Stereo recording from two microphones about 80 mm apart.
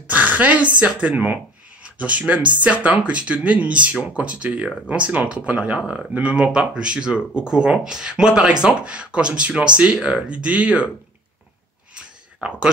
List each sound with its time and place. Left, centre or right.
0.1 s a sound: centre
0.7 s speech: centre
12.4 s speech: centre